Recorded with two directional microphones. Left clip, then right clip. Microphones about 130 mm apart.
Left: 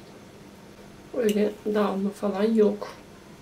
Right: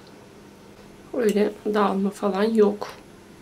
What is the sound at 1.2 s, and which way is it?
A woman's voice, 40° right (ahead or behind).